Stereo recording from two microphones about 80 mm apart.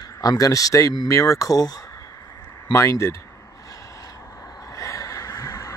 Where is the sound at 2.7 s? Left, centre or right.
Left.